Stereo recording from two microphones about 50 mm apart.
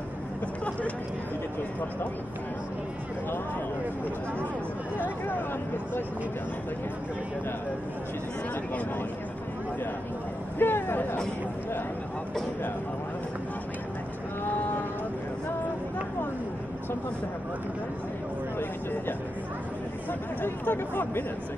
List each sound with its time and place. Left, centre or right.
4.9 s speech: left
10.6 s speech: left
20.1 s speech: left